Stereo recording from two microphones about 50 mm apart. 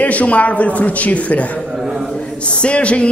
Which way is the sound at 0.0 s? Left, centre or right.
Left.